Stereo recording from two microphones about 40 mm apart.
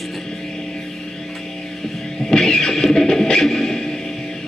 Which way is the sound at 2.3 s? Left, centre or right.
Centre.